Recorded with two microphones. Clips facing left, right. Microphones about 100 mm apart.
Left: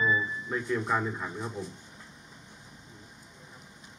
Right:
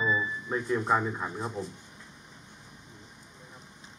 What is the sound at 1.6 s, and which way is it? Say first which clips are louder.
Speech: right 2 dB; 50° right (ahead or behind).